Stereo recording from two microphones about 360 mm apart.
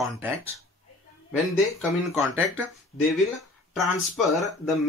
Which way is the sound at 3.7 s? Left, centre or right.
Centre.